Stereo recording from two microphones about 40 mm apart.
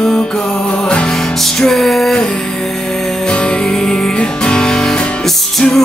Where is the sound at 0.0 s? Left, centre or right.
Left.